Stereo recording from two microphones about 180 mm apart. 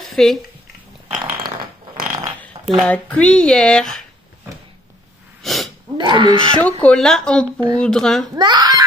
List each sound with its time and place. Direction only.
0.0 s a sound: centre (ahead or behind)
1.1 s a sound: 55° right (ahead or behind)
2.8 s speech: 5° left (ahead or behind)
5.4 s sneeze: centre (ahead or behind)
5.9 s speech: 25° right (ahead or behind)
6.5 s speech: 5° left (ahead or behind)
8.4 s giggle: 25° right (ahead or behind)